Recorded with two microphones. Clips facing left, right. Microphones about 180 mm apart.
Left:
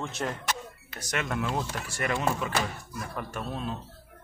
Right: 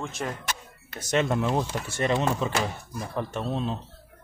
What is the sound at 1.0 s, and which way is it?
Speech, 25° right (ahead or behind).